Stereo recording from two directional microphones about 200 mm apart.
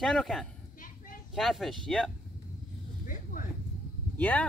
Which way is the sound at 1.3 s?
Centre (ahead or behind).